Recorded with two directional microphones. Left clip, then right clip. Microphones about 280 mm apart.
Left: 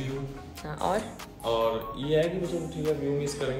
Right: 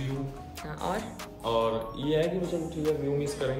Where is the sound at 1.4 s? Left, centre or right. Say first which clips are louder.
Left 1 dB; centre.